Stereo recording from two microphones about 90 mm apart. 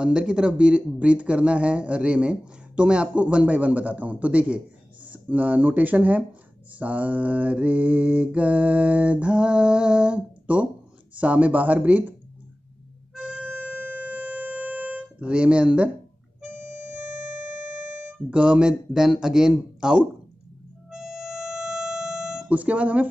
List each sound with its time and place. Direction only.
0.0 s speech: 10° right (ahead or behind)
13.1 s harmonica: 15° right (ahead or behind)
18.0 s speech: 10° right (ahead or behind)
20.9 s music: 5° right (ahead or behind)
22.6 s speech: 15° right (ahead or behind)